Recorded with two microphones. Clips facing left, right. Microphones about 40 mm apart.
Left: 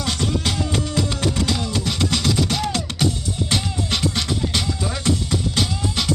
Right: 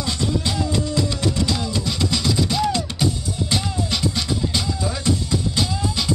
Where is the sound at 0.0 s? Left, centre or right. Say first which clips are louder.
Even; left.